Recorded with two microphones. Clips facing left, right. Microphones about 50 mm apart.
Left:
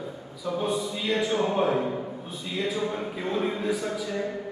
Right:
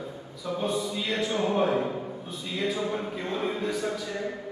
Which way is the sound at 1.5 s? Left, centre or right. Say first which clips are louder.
Right 3 dB; left.